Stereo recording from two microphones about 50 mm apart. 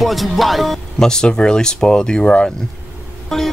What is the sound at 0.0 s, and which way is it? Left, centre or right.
Speech, centre.